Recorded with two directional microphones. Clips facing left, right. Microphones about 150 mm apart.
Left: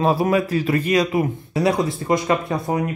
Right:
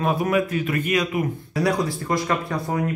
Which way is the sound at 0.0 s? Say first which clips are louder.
Left 3 dB; 30° left (ahead or behind).